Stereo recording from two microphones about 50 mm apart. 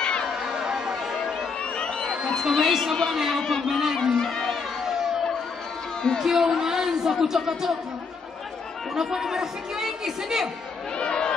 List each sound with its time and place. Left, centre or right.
0.3 s chatter: centre
2.5 s speech: centre
4.8 s a sound: centre
6.2 s speech: centre
8.9 s speech: centre
11.0 s speech: centre